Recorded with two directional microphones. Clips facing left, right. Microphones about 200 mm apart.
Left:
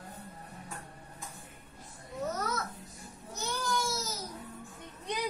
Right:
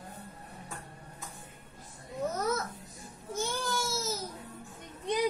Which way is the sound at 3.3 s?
25° right (ahead or behind).